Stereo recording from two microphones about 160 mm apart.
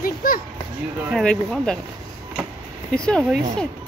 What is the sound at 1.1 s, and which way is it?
Speech, 5° left (ahead or behind).